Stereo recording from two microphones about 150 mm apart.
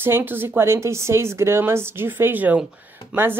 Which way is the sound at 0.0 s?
15° right (ahead or behind).